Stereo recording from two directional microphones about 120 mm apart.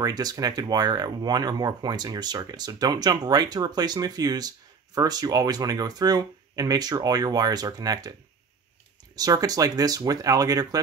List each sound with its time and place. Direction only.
0.0 s speech: 35° right (ahead or behind)
9.1 s speech: 30° right (ahead or behind)